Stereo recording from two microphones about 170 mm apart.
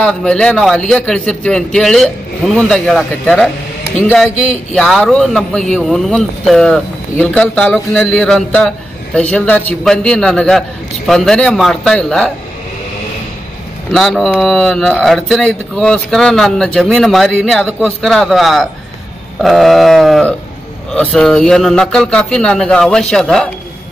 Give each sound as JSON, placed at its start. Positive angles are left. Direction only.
{"t": 0.0, "sound": "a man's voice", "side_deg": 5}
{"t": 13.9, "sound": "a man's voice", "side_deg": 0}